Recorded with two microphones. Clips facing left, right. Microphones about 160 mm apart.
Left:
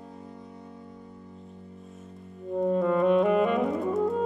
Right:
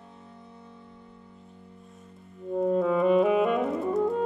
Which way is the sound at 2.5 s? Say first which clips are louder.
Even; centre (ahead or behind).